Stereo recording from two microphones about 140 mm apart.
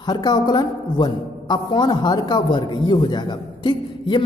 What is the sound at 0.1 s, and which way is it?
A man's voice, 30° left (ahead or behind).